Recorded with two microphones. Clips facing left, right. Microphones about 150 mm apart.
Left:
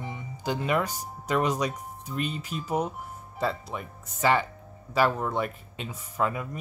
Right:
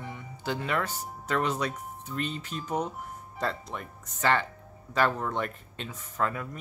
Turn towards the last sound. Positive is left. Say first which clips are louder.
# left 2 dB
turn(degrees=10)  # may be behind; listen again after turning